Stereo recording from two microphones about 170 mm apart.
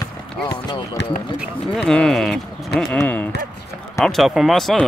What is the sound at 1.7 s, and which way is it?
Speech, 5° left (ahead or behind).